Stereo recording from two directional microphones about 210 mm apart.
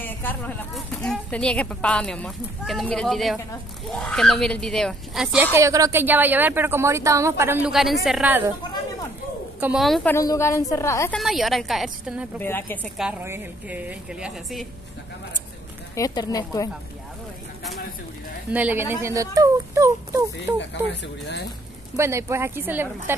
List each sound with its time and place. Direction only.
0.0 s speech: 10° left (ahead or behind); by 8.5 s 5° right (ahead or behind)
9.6 s a woman's voice: 5° right (ahead or behind)
10.1 s a woman's voice: 15° left (ahead or behind)
11.1 s a woman's voice: centre (ahead or behind)
12.4 s a woman's voice: 10° left (ahead or behind)
12.9 s speech: 5° right (ahead or behind)
15.9 s a woman's voice: 15° left (ahead or behind)
18.5 s speech: 5° right (ahead or behind)
20.9 s speech: 55° left (ahead or behind)
21.9 s speech: 15° right (ahead or behind)